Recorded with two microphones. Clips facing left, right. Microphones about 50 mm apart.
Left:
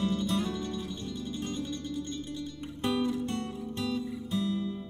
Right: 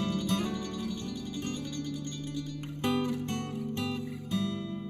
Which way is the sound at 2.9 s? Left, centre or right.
Right.